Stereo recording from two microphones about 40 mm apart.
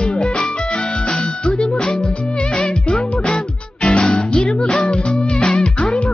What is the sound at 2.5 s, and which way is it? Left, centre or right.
Music, left.